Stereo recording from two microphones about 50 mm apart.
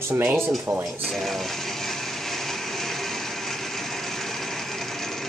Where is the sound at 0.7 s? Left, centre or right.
Right.